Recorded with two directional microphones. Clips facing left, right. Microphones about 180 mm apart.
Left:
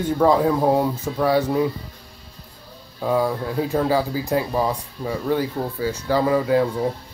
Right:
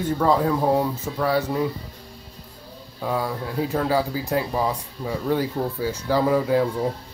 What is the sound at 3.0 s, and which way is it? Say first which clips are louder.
Speech: left 5 dB; centre (ahead or behind).